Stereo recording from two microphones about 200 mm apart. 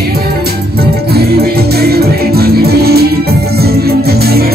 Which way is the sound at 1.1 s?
50° right (ahead or behind).